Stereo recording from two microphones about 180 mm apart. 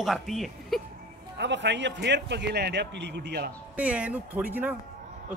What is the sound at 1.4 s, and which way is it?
A man's voice, 75° right (ahead or behind).